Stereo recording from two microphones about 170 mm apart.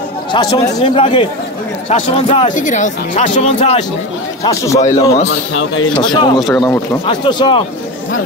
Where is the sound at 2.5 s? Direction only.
50° left (ahead or behind).